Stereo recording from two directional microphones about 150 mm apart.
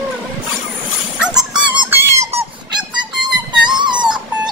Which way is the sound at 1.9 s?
15° right (ahead or behind).